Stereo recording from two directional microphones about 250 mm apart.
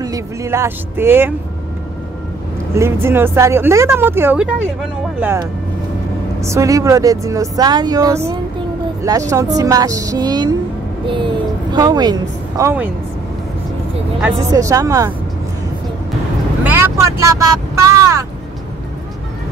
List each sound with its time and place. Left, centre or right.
0.0 s speech: centre
2.7 s speech: centre
11.7 s speech: centre
14.3 s speech: centre
16.6 s vehicle: centre